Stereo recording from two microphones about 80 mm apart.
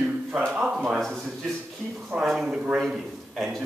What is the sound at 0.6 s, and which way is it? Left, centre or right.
Speech, centre.